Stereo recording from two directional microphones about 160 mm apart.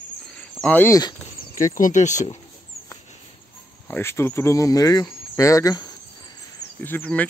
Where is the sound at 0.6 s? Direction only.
10° left (ahead or behind).